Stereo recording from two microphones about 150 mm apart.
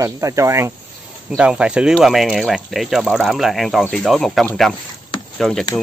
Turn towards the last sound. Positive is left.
turn(degrees=5)  # may be behind; listen again after turning